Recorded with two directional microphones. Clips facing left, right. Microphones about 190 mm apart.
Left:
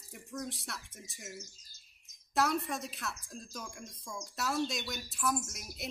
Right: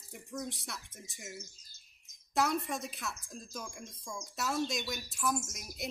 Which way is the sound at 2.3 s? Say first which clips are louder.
Even; centre (ahead or behind).